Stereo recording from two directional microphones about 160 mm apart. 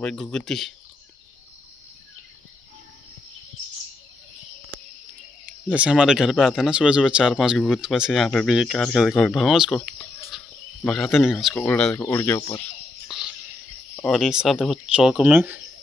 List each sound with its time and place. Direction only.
0.0 s speech: 5° left (ahead or behind)
5.7 s speech: 5° right (ahead or behind)
9.8 s a sound: 15° left (ahead or behind)
10.9 s speech: centre (ahead or behind); by 12.6 s 20° left (ahead or behind)
13.1 s whispering: centre (ahead or behind)
13.9 s speech: centre (ahead or behind)